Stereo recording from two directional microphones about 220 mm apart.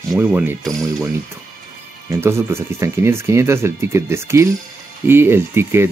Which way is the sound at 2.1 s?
10° right (ahead or behind).